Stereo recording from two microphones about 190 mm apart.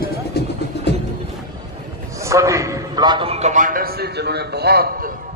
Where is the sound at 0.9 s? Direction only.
65° left (ahead or behind).